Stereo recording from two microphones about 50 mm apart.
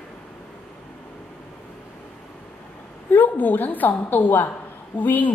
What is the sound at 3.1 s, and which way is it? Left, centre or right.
A woman's voice, left.